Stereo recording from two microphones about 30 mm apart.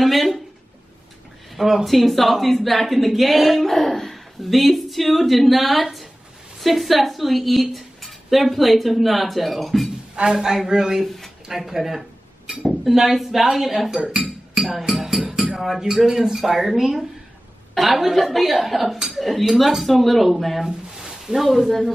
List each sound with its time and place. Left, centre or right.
0.0 s a woman's voice: centre
1.5 s a sound: centre
1.9 s a woman's voice: centre
4.4 s a woman's voice: centre
10.1 s speech: right
11.4 s speech: centre
16.4 s a woman's voice: centre
20.6 s a sound: centre
21.5 s a woman's voice: centre